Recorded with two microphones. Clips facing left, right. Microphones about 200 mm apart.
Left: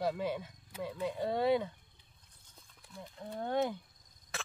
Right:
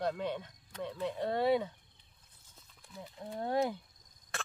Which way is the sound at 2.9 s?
5° right (ahead or behind).